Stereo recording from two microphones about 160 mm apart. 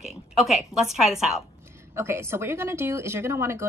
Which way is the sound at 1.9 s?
15° right (ahead or behind).